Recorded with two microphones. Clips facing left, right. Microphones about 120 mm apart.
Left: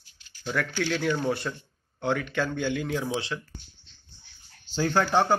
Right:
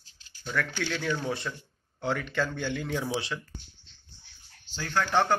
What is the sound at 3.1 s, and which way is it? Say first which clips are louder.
Speech: left 1 dB; 20° left (ahead or behind).